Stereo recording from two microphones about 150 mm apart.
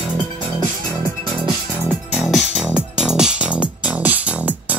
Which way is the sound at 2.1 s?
5° right (ahead or behind).